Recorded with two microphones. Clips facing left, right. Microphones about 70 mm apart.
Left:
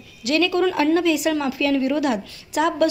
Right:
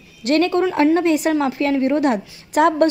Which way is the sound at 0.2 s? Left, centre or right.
Right.